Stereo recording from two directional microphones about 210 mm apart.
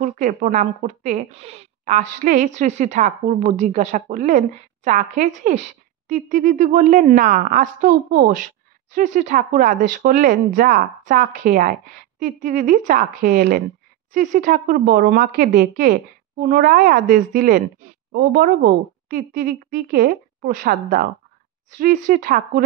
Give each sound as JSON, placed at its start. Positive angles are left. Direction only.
{"t": 0.0, "sound": "a woman's voice", "side_deg": -35}